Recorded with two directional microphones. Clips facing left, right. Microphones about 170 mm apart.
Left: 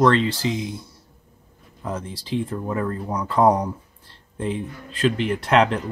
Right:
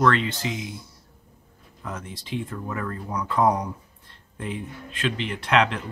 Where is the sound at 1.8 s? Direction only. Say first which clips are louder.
Left 5 dB; 30° left (ahead or behind).